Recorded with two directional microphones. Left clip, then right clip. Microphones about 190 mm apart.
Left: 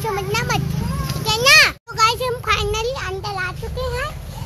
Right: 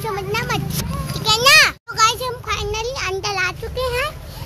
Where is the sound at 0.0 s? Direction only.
5° left (ahead or behind).